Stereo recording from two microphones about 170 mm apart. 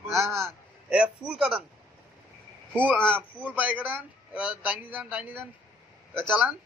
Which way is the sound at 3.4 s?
10° right (ahead or behind).